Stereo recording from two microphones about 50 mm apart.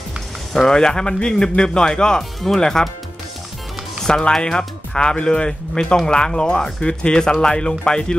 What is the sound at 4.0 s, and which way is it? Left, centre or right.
Speech, centre.